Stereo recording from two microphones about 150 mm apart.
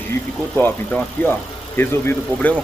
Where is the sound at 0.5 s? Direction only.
10° left (ahead or behind).